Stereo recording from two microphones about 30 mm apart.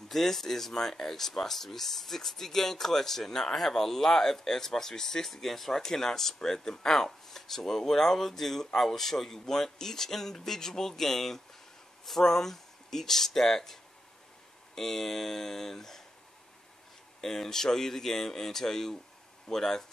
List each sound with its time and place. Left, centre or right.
0.1 s speech: centre
14.8 s speech: centre
17.2 s speech: centre